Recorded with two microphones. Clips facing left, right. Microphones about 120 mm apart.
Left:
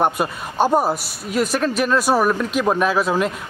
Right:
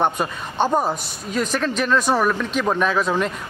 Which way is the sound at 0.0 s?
10° left (ahead or behind).